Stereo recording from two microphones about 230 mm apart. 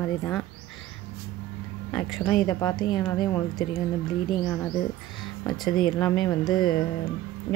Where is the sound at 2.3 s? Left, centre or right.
Centre.